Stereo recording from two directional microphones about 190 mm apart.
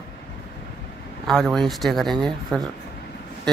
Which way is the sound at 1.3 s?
Centre (ahead or behind).